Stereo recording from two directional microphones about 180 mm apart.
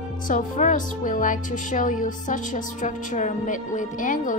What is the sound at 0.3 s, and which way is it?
Speech, 45° left (ahead or behind).